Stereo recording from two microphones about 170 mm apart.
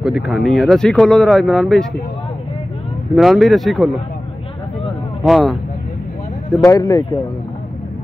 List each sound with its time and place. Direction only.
0.0 s speech: centre (ahead or behind)
3.2 s speech: centre (ahead or behind)
5.2 s speech: centre (ahead or behind)
6.6 s speech: 20° left (ahead or behind)